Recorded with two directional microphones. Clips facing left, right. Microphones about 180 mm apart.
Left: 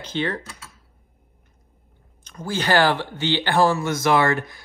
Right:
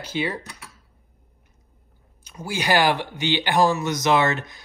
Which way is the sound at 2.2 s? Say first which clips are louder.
Left 1 dB; 10° right (ahead or behind).